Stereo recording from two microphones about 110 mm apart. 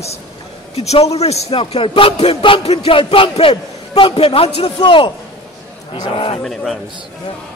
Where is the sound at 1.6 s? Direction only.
55° left (ahead or behind).